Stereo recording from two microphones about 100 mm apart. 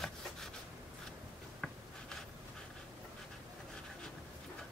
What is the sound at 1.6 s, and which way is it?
Writing, 5° left (ahead or behind).